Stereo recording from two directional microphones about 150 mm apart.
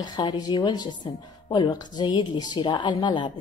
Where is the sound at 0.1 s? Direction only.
30° left (ahead or behind).